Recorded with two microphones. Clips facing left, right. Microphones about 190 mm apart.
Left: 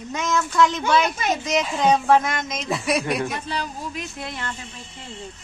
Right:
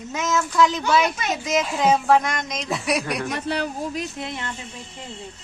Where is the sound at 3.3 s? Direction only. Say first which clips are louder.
Right 4 dB; 60° right (ahead or behind).